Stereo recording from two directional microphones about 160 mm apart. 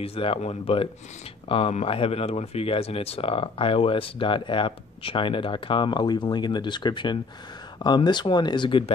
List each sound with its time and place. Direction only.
0.0 s speech: 35° left (ahead or behind)